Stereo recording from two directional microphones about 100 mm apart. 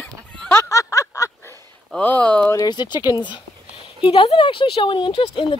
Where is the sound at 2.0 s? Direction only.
15° left (ahead or behind).